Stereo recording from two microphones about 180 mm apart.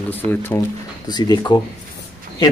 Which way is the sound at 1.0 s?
20° left (ahead or behind).